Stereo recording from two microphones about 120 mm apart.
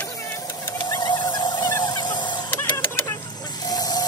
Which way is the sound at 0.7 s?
35° left (ahead or behind).